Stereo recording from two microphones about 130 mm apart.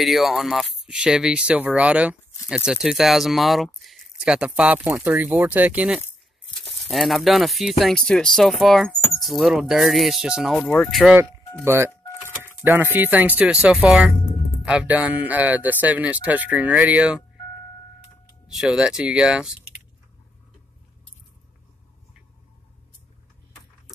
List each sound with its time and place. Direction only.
0.0 s speech: centre (ahead or behind)
10.6 s speech: 10° left (ahead or behind)
11.1 s speech: 20° right (ahead or behind)
18.5 s speech: 5° right (ahead or behind)